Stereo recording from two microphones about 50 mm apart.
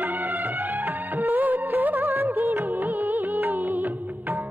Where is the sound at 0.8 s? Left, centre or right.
Right.